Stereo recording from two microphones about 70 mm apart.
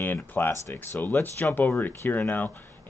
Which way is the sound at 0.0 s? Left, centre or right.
Left.